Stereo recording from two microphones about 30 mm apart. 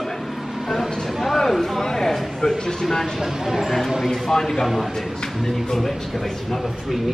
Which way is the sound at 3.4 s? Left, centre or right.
Centre.